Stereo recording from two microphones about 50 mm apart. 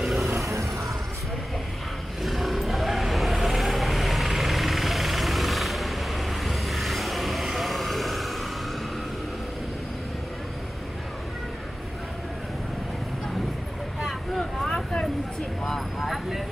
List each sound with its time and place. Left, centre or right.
0.0 s vehicle: centre
0.5 s vehicle: right
2.2 s vehicle: centre
14.0 s vehicle: centre